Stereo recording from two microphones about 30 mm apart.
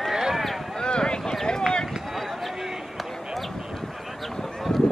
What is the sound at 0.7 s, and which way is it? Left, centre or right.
Clip-clop, left.